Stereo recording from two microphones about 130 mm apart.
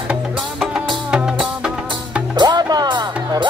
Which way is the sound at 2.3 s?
35° right (ahead or behind).